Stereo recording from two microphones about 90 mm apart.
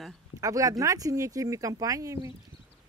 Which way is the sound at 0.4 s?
40° right (ahead or behind).